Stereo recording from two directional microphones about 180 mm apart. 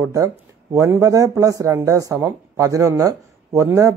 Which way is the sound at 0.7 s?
15° right (ahead or behind).